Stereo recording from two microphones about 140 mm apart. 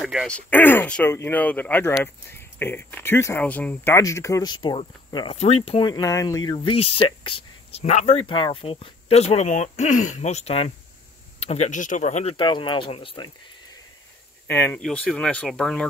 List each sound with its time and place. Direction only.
0.0 s speech: centre (ahead or behind)
0.5 s speech: 15° left (ahead or behind); by 5.9 s 45° left (ahead or behind)
5.9 s speech: 25° left (ahead or behind); by 12.4 s 55° left (ahead or behind)
12.4 s speech: 35° left (ahead or behind)
14.5 s speech: 15° left (ahead or behind)
14.8 s speech: 5° left (ahead or behind)